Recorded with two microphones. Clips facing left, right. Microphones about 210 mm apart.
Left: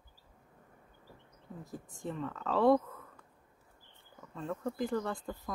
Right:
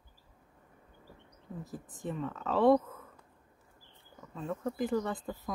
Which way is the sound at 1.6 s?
Centre (ahead or behind).